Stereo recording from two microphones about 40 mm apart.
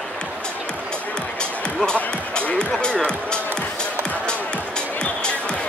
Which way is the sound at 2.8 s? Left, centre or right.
Left.